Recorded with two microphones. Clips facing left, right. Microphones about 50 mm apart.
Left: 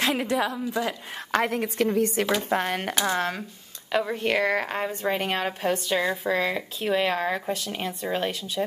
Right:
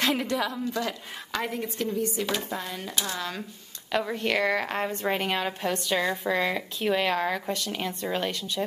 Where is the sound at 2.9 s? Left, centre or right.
Left.